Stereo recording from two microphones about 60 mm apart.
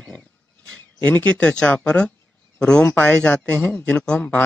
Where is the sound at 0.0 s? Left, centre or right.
Left.